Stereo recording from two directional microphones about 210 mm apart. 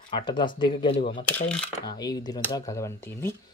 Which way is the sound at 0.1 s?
20° left (ahead or behind).